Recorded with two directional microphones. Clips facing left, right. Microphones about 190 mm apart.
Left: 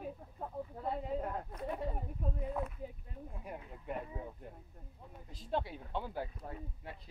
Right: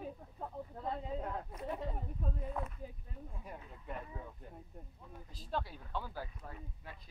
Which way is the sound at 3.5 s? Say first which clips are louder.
Left 5 dB; 15° left (ahead or behind).